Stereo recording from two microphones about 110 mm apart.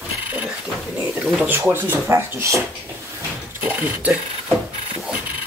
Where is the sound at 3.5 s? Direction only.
20° right (ahead or behind).